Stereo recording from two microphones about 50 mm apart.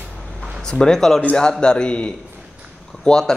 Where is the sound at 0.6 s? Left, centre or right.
Centre.